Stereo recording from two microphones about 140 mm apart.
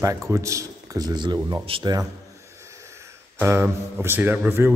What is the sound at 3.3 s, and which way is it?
Speech, 15° right (ahead or behind).